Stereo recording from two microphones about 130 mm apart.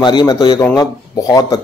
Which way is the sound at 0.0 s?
35° left (ahead or behind).